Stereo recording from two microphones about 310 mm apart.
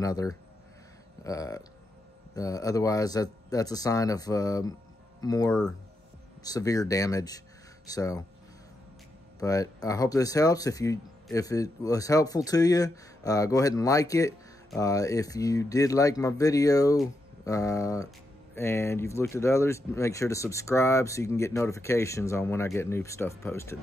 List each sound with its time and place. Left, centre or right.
0.0 s speech: centre
9.4 s speech: centre